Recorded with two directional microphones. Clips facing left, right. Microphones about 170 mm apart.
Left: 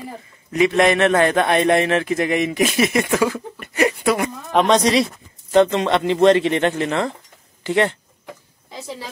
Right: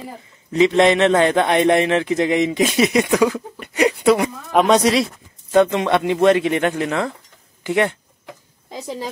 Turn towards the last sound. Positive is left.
turn(degrees=-10)  # may be behind; listen again after turning